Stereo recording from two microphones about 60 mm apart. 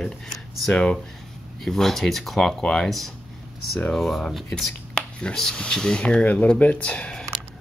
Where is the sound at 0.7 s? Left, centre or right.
Centre.